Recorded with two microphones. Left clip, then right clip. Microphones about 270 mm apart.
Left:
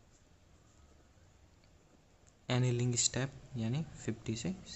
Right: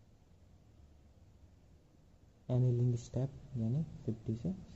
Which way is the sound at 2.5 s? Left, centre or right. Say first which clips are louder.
Left 2 dB; left.